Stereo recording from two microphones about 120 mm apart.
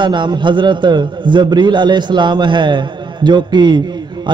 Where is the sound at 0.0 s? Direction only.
40° right (ahead or behind).